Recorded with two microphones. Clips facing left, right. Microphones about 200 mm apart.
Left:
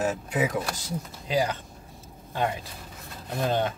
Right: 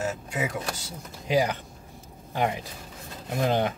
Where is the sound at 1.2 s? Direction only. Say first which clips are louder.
Right 3 dB; 15° right (ahead or behind).